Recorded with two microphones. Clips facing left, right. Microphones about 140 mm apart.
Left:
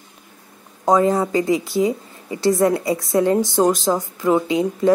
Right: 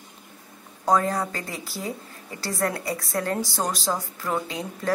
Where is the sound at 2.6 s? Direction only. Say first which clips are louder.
Left 9 dB; 20° left (ahead or behind).